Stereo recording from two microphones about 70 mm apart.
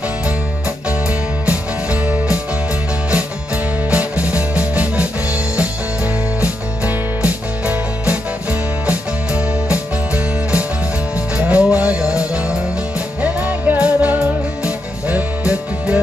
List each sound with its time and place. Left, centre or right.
1.4 s music: centre
3.9 s music: centre